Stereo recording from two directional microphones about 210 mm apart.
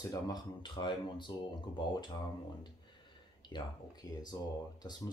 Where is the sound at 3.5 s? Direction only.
20° left (ahead or behind).